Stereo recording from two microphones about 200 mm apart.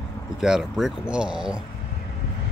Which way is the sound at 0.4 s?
Centre (ahead or behind).